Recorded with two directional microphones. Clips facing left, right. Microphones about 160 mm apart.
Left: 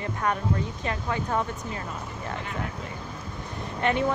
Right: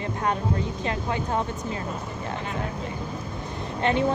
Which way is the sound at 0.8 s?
25° right (ahead or behind).